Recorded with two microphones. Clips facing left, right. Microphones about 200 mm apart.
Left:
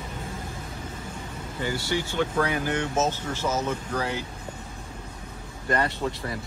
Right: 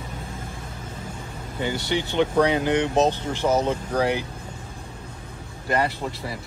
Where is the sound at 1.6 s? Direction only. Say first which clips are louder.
Right 3 dB; 20° right (ahead or behind).